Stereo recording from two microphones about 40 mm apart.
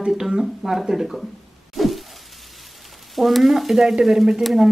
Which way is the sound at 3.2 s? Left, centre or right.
Centre.